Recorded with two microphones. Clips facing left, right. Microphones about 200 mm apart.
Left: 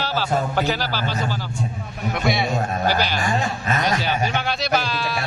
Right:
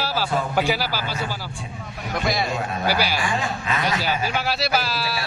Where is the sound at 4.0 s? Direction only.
5° right (ahead or behind).